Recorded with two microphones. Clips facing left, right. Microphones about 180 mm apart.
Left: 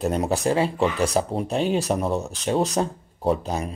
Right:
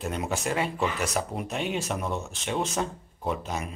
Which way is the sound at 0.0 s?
40° left (ahead or behind).